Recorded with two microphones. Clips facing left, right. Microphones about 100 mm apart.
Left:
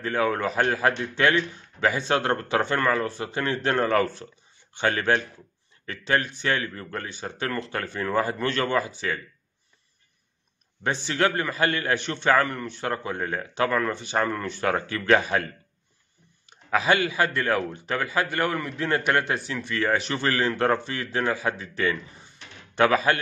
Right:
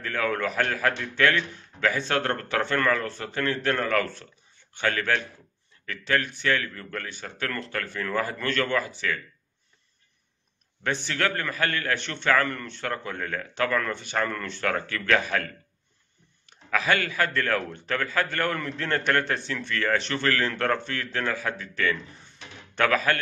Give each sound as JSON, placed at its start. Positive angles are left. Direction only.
{"t": 0.0, "sound": "a man's voice", "side_deg": 25}
{"t": 10.8, "sound": "a man's voice", "side_deg": 20}